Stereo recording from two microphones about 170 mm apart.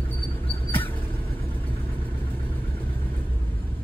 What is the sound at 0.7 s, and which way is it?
Vehicle, 10° left (ahead or behind).